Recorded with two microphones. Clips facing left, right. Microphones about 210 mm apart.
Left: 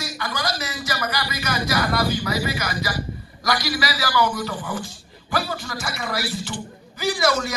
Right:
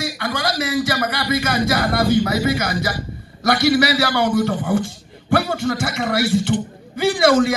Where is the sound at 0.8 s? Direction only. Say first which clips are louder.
Right 6 dB; 55° right (ahead or behind).